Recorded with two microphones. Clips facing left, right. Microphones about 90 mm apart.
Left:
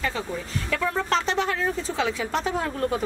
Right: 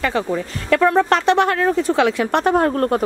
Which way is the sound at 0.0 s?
65° right (ahead or behind).